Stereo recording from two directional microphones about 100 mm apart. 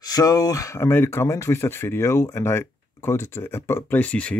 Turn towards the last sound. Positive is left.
turn(degrees=15)  # may be behind; listen again after turning